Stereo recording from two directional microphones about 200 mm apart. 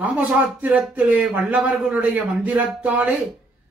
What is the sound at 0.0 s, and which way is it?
Speech, 5° right (ahead or behind).